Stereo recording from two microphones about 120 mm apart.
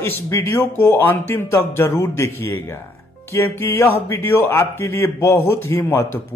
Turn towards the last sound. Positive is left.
turn(degrees=20)  # may be behind; listen again after turning